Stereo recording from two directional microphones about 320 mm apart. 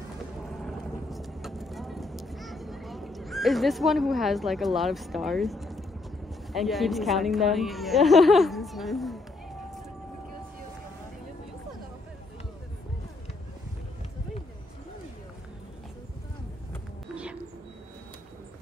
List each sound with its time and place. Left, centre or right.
0.5 s vehicle: centre
6.5 s speech: centre
17.1 s a sound: centre